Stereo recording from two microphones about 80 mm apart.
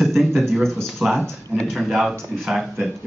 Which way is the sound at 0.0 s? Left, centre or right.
Centre.